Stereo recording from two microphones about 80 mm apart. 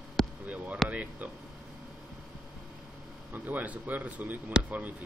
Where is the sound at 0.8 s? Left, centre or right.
Centre.